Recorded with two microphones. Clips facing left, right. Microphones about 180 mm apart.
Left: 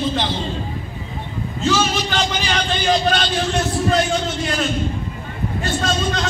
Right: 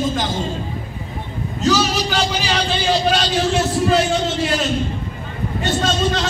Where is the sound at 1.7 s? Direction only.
35° right (ahead or behind).